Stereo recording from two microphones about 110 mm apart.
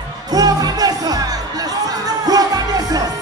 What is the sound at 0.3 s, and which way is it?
Music, 35° right (ahead or behind).